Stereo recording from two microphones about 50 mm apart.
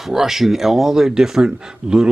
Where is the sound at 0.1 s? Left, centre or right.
Centre.